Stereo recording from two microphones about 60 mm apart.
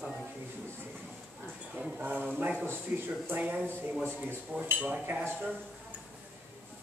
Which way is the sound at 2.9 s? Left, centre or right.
Right.